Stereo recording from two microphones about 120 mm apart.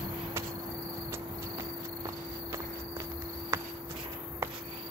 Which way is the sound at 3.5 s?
20° right (ahead or behind).